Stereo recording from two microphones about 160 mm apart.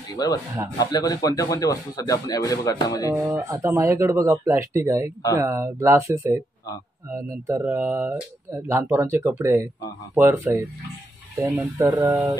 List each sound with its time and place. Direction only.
0.2 s speech: 25° left (ahead or behind)
3.3 s speech: 15° right (ahead or behind)